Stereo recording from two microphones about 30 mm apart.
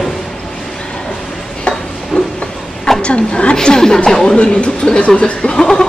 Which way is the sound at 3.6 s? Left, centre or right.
Left.